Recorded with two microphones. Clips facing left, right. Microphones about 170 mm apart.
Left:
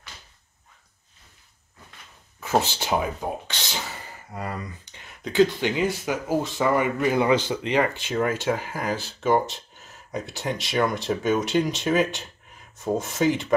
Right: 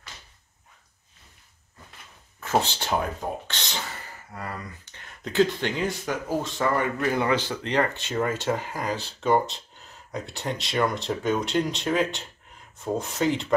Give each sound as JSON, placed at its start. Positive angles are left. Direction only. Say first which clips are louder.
{"t": 2.8, "sound": "speech", "louder": "left 2 dB", "side_deg": 10}
{"t": 4.3, "sound": "speech", "louder": "left 4 dB", "side_deg": 20}
{"t": 5.2, "sound": "speech", "louder": "left 3 dB", "side_deg": 0}